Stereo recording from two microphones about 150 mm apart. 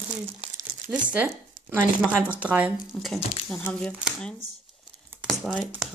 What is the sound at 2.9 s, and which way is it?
Speech, 5° left (ahead or behind).